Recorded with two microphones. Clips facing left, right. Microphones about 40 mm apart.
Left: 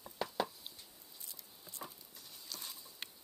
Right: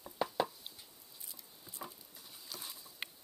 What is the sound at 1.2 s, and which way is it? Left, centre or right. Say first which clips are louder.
Patter: right 1 dB; centre.